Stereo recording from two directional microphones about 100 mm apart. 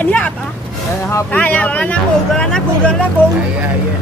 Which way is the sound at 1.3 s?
15° left (ahead or behind).